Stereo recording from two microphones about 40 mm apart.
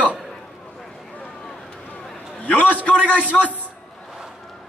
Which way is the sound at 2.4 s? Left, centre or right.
Left.